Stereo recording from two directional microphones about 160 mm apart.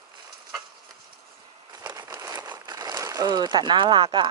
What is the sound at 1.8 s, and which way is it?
Crumpling, 20° right (ahead or behind).